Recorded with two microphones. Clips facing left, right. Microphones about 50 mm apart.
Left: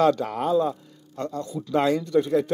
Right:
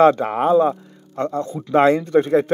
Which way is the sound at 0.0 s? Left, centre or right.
Right.